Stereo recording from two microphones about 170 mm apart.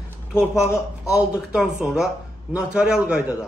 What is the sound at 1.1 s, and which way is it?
Speech, 5° right (ahead or behind).